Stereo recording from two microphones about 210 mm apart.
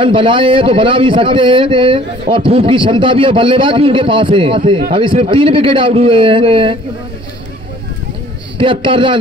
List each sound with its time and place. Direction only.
0.0 s a man's voice: 25° right (ahead or behind)
8.5 s a man's voice: 25° right (ahead or behind)